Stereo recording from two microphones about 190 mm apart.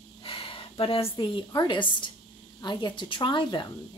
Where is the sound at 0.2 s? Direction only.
30° left (ahead or behind).